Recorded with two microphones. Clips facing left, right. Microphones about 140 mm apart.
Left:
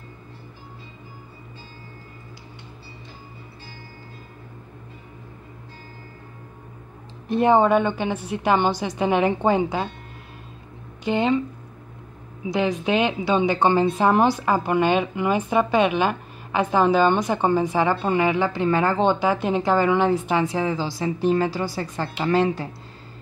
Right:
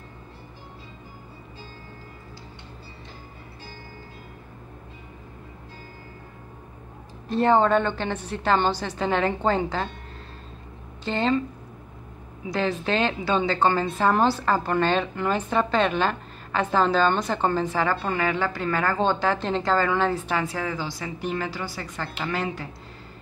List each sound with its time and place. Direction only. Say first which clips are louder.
7.2 s a woman's voice: left 2 dB; 15° left (ahead or behind)
11.1 s a woman's voice: left 3 dB; 15° left (ahead or behind)
12.4 s a woman's voice: left 3 dB; 15° left (ahead or behind); by 22.7 s 30° left (ahead or behind)